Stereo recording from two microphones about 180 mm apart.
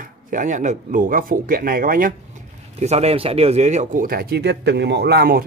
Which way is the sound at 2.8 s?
35° right (ahead or behind).